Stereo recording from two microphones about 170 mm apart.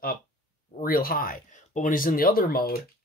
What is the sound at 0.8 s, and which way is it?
Speech, 60° left (ahead or behind).